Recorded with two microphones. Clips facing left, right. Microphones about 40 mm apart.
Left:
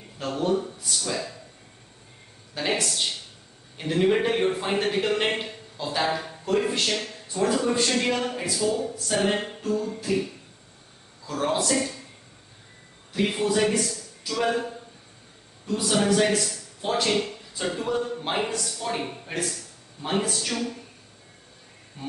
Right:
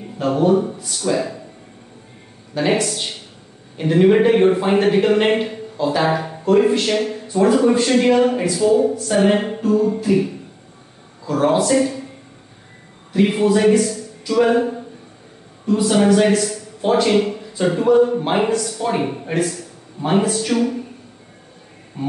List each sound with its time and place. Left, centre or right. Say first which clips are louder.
0.0 s speech: right 10 dB; centre
0.7 s a man's voice: right 9 dB; centre
2.5 s a man's voice: right 8 dB; centre
6.0 s speech: right 8 dB; right
6.7 s a man's voice: right 9 dB; centre
9.6 s music: right 10 dB; centre
11.2 s a man's voice: right 9 dB; centre
13.1 s a man's voice: right 8 dB; centre
15.6 s a man's voice: right 9 dB; centre
18.5 s speech: right 11 dB; centre
18.8 s a man's voice: right 9 dB; centre
22.0 s speech: right 11 dB; centre